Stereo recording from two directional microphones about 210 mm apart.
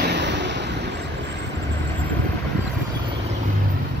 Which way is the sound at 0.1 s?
55° right (ahead or behind).